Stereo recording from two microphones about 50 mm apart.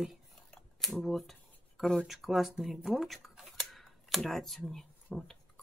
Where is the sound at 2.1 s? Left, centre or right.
Centre.